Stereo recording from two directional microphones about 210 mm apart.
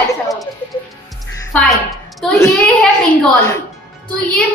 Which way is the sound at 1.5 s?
Centre (ahead or behind).